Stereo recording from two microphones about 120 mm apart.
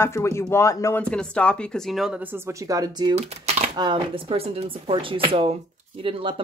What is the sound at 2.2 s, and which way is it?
Speech, 20° right (ahead or behind).